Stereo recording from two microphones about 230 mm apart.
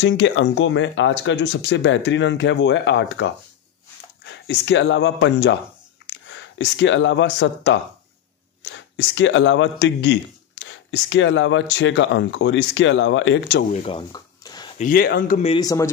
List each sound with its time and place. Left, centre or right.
0.0 s speech: left
13.8 s a sound: centre
14.8 s speech: left
15.6 s speech: centre